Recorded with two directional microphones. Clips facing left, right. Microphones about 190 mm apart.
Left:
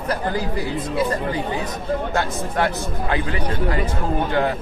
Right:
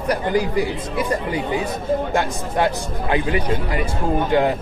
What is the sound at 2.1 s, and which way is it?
Speech, 15° right (ahead or behind).